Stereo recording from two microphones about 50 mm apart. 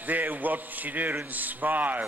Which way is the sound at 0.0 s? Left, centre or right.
Right.